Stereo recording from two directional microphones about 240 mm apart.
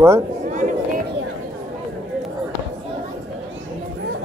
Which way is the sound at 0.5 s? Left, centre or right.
Right.